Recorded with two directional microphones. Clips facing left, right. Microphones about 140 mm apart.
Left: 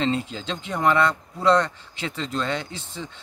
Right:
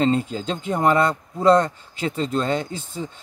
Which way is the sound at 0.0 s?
40° right (ahead or behind).